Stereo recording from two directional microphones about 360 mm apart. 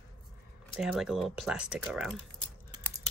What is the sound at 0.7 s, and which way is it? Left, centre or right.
Speech, centre.